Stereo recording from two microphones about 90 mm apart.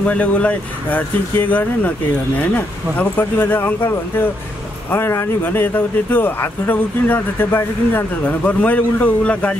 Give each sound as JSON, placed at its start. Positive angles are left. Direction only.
{"t": 0.0, "sound": "a man's voice", "side_deg": 15}